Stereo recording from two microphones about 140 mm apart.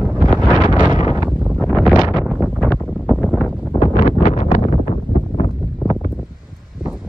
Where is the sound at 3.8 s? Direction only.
65° left (ahead or behind).